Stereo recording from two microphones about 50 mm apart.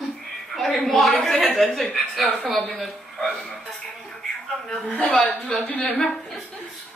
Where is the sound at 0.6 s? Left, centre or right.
Centre.